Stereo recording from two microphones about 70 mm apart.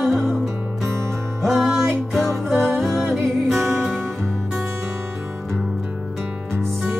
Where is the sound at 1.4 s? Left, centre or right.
Centre.